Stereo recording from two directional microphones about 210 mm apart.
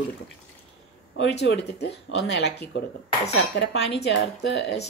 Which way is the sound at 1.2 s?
55° left (ahead or behind).